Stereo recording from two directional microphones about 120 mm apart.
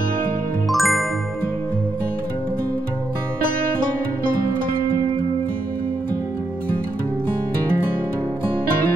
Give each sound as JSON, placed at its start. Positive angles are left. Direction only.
{"t": 0.7, "sound": "music", "side_deg": 0}